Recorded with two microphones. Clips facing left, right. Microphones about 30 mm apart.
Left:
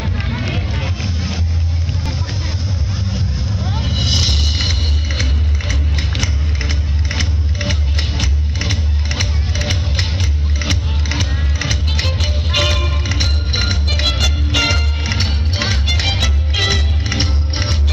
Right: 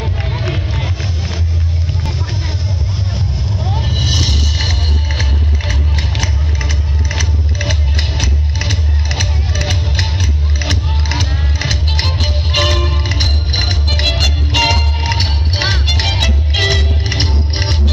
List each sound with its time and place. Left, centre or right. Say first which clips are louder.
0.0 s run: right 1 dB; centre
3.9 s music: left 1 dB; left
5.2 s music: right 2 dB; right
6.6 s music: right 2 dB; left
7.6 s music: right 1 dB; right
10.6 s music: right 1 dB; right
11.9 s music: right 2 dB; right
13.0 s music: right 2 dB; right